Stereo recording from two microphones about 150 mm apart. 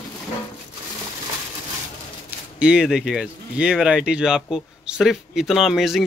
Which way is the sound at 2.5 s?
5° right (ahead or behind).